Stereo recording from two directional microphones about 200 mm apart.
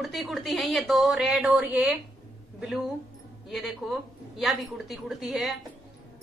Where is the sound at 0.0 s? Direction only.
Centre (ahead or behind).